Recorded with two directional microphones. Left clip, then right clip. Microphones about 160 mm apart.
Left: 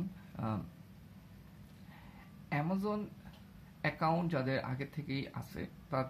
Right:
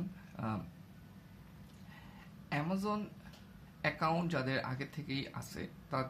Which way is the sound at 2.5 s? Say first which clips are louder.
Even; 30° left (ahead or behind).